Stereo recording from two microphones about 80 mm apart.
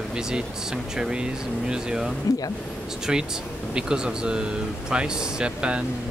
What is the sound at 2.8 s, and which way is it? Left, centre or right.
Speech, centre.